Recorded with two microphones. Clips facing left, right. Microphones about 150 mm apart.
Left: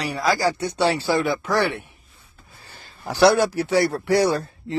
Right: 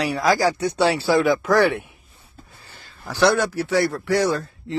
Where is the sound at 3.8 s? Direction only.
40° left (ahead or behind).